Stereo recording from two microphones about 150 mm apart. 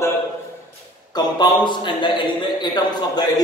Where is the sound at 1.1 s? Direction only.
30° left (ahead or behind).